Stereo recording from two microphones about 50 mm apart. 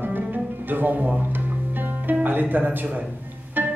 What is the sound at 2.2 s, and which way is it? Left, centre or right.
Speech, right.